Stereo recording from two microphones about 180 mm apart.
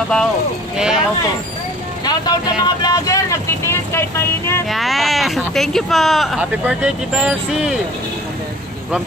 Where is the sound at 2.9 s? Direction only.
20° left (ahead or behind).